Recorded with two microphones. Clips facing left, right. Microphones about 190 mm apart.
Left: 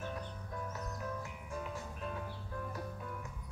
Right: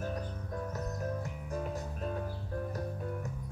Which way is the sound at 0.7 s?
40° right (ahead or behind).